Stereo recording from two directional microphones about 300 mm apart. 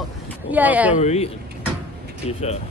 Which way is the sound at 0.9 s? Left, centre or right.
Left.